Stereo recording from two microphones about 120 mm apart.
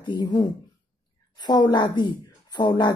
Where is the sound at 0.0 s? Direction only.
35° left (ahead or behind).